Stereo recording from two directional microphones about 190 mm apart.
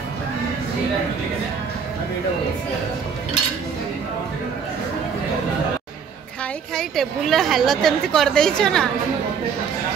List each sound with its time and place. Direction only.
6.7 s a woman's voice: centre (ahead or behind)